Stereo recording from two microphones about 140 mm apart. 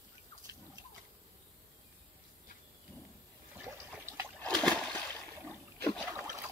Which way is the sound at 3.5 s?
15° right (ahead or behind).